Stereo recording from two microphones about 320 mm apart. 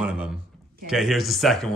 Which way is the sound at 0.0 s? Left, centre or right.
Centre.